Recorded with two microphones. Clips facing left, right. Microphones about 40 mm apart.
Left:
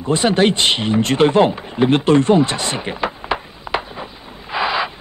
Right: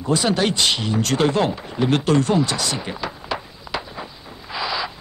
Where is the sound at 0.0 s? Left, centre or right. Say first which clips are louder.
Left 4 dB; left.